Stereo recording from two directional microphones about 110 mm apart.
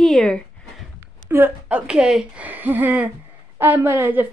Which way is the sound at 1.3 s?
20° right (ahead or behind).